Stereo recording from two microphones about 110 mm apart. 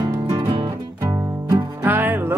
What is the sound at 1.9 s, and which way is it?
Music, 15° right (ahead or behind).